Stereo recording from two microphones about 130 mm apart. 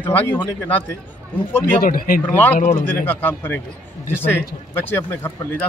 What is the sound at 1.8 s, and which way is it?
Speech, 90° left.